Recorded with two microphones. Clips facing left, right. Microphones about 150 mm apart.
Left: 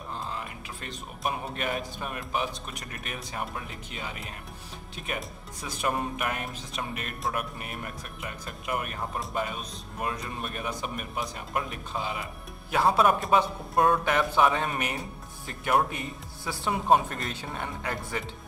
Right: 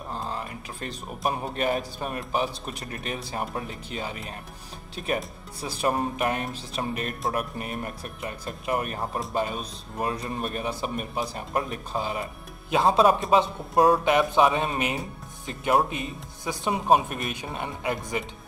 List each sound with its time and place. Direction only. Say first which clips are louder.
0.1 s music: right 3 dB; 40° right (ahead or behind)
1.5 s speech: right 5 dB; 35° right (ahead or behind)
12.7 s speech: right 3 dB; 20° right (ahead or behind)
14.0 s speech: right 3 dB; 20° right (ahead or behind)